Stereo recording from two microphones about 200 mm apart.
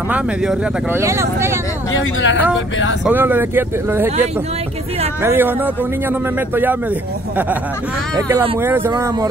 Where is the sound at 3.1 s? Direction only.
10° right (ahead or behind).